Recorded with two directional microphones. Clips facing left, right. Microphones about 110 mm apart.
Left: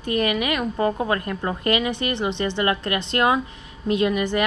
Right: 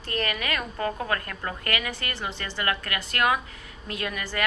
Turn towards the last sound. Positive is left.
turn(degrees=20)  # may be behind; listen again after turning